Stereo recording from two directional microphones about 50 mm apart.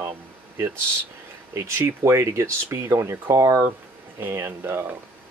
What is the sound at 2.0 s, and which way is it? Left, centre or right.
Speech, right.